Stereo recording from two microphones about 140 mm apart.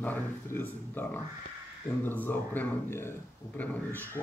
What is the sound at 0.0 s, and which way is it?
Speech, 15° left (ahead or behind).